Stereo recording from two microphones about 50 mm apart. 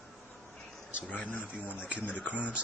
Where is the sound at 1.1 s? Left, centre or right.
Left.